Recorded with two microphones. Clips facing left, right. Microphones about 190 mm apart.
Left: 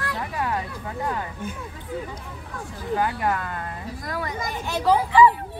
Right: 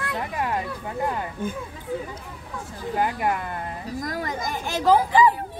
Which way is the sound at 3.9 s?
45° right (ahead or behind).